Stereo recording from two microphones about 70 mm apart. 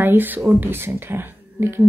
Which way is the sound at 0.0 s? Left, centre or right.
Right.